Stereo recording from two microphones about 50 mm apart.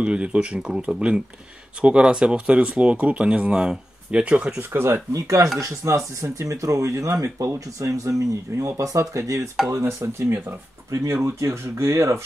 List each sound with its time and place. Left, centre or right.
0.0 s speech: right
5.1 s speech: right
9.7 s speech: right
10.9 s speech: right